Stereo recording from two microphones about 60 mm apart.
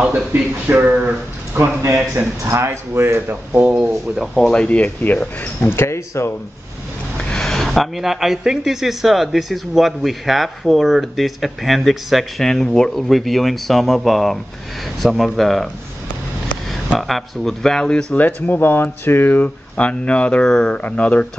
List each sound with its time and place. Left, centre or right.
0.8 s speech: right
1.6 s speech: right
3.6 s speech: centre
4.5 s speech: centre
5.7 s speech: left
7.2 s speech: centre
17.0 s speech: centre
18.1 s speech: left
19.4 s speech: left
20.4 s speech: centre
20.7 s speech: left